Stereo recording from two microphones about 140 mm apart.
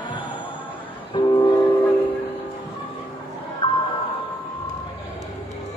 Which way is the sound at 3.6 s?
35° left (ahead or behind).